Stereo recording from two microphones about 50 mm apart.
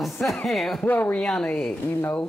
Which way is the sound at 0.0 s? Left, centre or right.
Centre.